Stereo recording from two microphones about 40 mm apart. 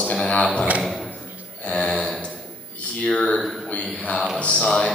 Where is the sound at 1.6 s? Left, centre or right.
Left.